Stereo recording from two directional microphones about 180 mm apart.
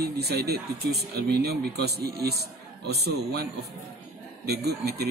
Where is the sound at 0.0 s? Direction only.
60° right (ahead or behind).